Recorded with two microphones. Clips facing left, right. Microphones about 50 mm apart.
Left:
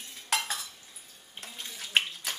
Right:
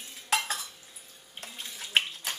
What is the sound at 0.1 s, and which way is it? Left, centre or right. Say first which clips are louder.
Dishes: right 2 dB; centre.